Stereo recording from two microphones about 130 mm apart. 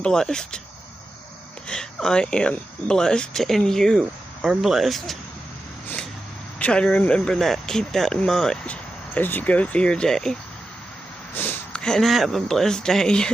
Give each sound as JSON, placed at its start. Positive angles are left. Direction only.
{"t": 0.0, "sound": "speech", "side_deg": 5}
{"t": 1.7, "sound": "speech", "side_deg": 5}
{"t": 6.6, "sound": "speech", "side_deg": 10}
{"t": 11.3, "sound": "a sound", "side_deg": 15}
{"t": 11.8, "sound": "speech", "side_deg": 5}